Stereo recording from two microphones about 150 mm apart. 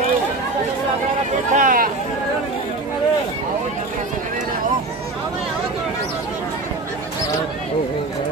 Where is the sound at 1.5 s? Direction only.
65° right (ahead or behind).